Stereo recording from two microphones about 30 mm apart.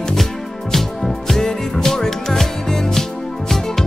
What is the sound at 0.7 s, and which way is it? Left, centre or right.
Music, centre.